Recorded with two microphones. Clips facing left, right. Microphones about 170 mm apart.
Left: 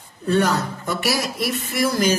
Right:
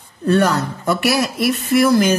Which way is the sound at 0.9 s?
65° right (ahead or behind).